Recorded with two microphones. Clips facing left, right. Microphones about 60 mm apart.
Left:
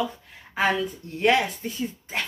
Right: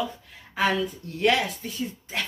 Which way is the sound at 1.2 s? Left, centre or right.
Left.